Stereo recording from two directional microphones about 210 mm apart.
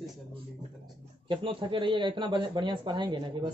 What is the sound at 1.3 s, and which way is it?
Speech, 25° right (ahead or behind).